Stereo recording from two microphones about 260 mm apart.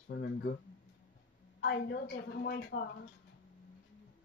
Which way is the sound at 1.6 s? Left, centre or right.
Left.